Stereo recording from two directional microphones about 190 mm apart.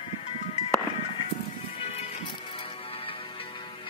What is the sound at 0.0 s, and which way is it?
Music, 30° left (ahead or behind).